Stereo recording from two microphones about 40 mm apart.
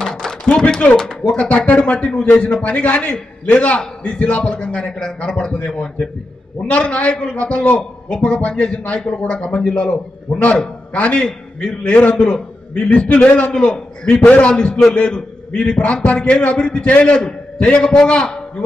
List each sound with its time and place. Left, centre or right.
0.1 s a sound: centre
1.3 s a man's voice: left
2.6 s a man's voice: left
6.7 s a man's voice: left
7.3 s a man's voice: left
12.2 s a man's voice: left
14.5 s a man's voice: centre